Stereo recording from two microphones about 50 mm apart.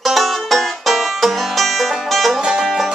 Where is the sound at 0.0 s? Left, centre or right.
Centre.